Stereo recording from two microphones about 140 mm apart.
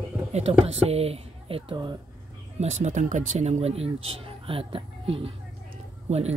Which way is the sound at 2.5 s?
55° right (ahead or behind).